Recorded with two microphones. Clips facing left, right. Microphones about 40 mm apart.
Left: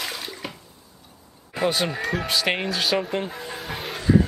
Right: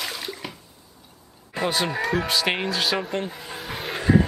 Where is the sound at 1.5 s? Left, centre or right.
Centre.